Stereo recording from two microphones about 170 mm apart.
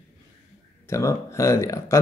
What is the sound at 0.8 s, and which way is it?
Speech, 15° left (ahead or behind).